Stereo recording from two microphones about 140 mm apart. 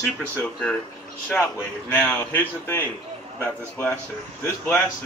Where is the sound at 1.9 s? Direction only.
15° left (ahead or behind).